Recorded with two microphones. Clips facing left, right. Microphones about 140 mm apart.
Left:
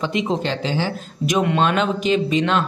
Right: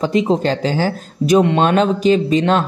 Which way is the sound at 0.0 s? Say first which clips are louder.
Right 6 dB; 35° right (ahead or behind).